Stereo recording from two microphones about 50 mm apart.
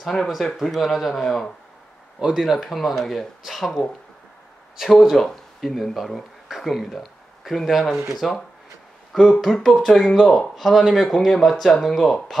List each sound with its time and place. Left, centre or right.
0.0 s speech: centre
2.2 s speech: centre
4.7 s speech: centre
9.1 s speech: centre